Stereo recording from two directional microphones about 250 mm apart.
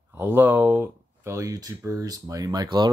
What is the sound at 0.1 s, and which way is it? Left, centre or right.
Speech, centre.